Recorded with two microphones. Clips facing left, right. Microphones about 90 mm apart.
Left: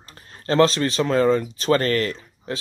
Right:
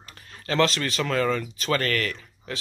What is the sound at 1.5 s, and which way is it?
Speech, 35° left (ahead or behind).